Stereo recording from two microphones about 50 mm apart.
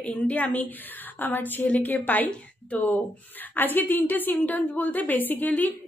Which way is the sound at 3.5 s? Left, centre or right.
Left.